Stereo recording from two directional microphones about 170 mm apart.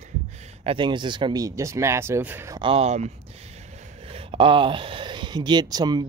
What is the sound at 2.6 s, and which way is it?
Speech, 35° right (ahead or behind).